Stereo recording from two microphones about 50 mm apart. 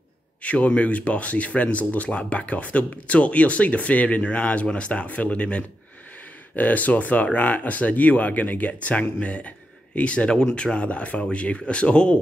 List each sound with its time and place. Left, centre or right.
0.4 s speech: left